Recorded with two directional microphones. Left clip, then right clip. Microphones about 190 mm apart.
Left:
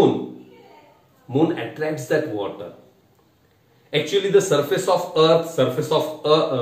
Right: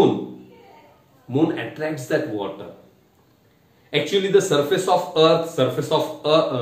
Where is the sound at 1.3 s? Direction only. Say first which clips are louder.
Left 1 dB; 25° right (ahead or behind).